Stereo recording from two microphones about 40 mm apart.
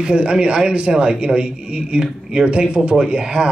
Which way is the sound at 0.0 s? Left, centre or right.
Right.